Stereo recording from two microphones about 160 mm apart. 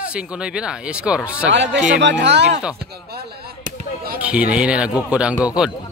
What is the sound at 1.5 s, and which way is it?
Speech, 90° right.